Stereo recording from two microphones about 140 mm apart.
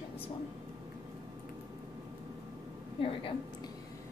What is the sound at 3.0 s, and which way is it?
Speech, 40° left (ahead or behind).